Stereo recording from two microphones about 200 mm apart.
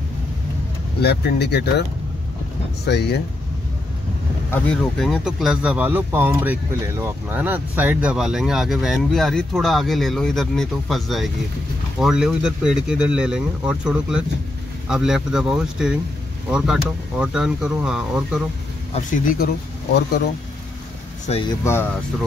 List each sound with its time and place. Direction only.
1.0 s speech: 55° left (ahead or behind)
2.8 s speech: 55° left (ahead or behind)
4.5 s speech: 5° left (ahead or behind)
19.0 s speech: 45° left (ahead or behind)
21.3 s speech: 30° left (ahead or behind)